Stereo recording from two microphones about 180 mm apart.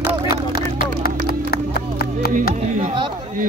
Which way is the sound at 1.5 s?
60° left (ahead or behind).